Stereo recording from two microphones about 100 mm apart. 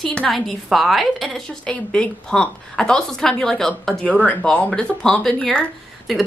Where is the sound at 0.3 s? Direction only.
Centre (ahead or behind).